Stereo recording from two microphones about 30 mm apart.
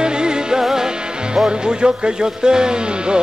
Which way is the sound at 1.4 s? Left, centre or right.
Right.